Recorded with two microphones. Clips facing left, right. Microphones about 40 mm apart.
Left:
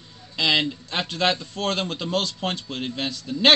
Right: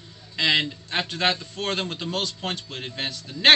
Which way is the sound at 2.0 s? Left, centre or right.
Left.